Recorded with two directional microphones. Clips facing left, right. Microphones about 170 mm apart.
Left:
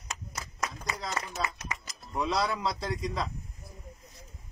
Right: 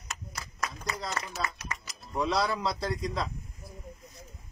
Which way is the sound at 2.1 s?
Centre (ahead or behind).